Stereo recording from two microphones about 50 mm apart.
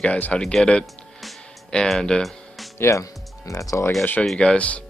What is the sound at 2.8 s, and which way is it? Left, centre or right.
Speech, left.